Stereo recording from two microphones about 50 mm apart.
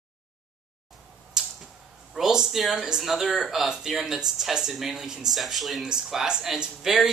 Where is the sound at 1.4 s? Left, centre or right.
Centre.